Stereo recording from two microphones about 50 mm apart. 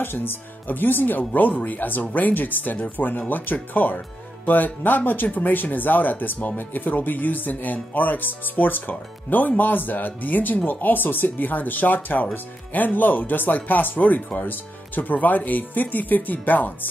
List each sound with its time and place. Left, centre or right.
0.0 s speech: left